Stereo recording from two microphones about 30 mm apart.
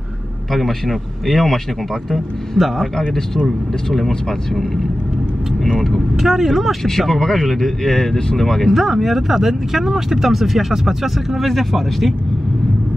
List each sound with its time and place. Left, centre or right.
0.5 s speech: centre
2.1 s speech: centre
4.1 s speech: centre
6.1 s speech: centre
6.8 s speech: centre
8.7 s speech: centre
11.4 s speech: centre